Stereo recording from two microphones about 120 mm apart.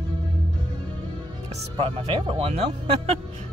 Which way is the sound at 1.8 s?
50° right (ahead or behind).